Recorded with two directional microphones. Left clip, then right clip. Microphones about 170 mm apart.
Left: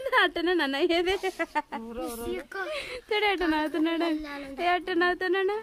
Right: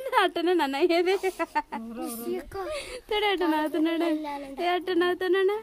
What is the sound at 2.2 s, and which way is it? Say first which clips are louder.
Speech: right 3 dB; 10° left (ahead or behind).